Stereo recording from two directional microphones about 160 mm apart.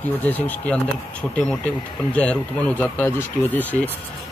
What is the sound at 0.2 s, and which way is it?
Speech, 10° left (ahead or behind).